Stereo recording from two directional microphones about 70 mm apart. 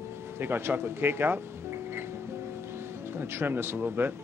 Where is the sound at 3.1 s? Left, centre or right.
Right.